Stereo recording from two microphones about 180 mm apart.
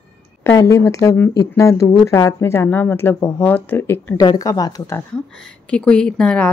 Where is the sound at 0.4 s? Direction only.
15° left (ahead or behind).